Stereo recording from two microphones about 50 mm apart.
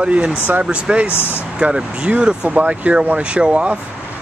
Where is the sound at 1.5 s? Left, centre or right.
Right.